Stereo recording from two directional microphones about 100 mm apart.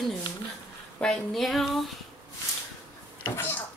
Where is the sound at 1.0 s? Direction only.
10° left (ahead or behind).